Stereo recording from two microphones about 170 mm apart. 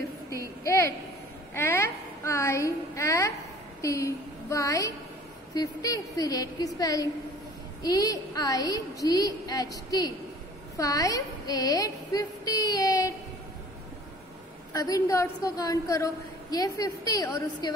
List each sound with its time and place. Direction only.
0.3 s a woman's voice: 20° left (ahead or behind)
14.7 s a woman's voice: 20° left (ahead or behind)